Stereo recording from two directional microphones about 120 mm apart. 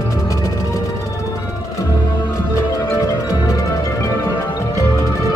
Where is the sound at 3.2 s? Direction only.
30° left (ahead or behind).